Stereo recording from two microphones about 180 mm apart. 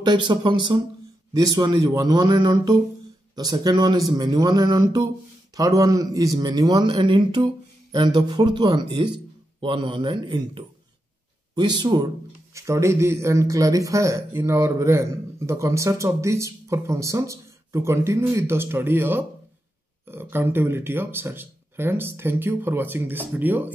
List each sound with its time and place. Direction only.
0.0 s a man's voice: 25° right (ahead or behind)